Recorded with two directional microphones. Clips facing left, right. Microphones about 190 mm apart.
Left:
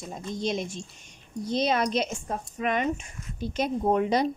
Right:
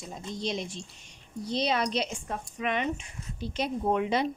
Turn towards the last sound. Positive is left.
turn(degrees=40)  # may be behind; listen again after turning